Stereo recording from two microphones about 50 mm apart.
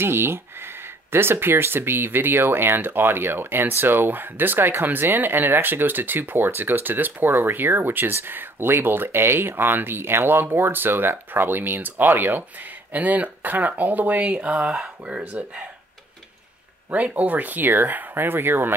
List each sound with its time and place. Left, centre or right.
0.0 s speech: right
16.9 s speech: right